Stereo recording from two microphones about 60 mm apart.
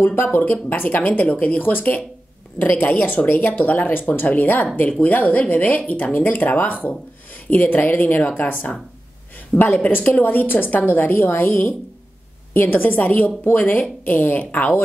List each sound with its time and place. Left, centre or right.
0.0 s a woman's voice: left